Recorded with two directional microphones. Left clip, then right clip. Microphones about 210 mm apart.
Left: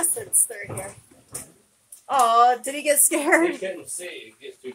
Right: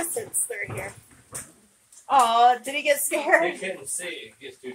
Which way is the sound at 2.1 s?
20° left (ahead or behind).